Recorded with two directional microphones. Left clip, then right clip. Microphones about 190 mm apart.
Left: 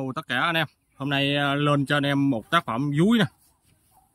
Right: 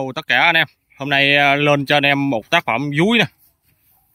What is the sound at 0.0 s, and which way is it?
Speech, 35° right (ahead or behind).